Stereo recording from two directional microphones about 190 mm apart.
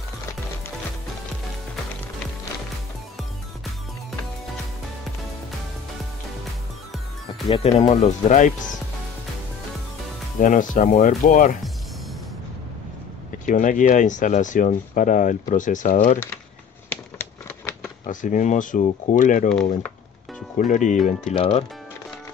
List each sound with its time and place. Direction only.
7.4 s speech: 30° left (ahead or behind)
10.4 s speech: 45° left (ahead or behind)
13.5 s speech: 45° left (ahead or behind)
18.0 s speech: 40° left (ahead or behind)
20.5 s speech: 40° left (ahead or behind)